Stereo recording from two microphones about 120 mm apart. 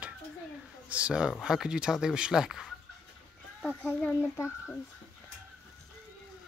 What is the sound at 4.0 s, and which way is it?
Speech, 20° left (ahead or behind).